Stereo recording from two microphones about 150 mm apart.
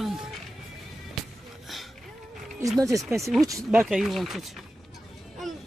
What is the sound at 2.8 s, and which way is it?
Speech, 20° right (ahead or behind).